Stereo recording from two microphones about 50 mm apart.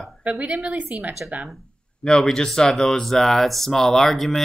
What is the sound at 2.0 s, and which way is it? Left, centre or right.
Speech, centre.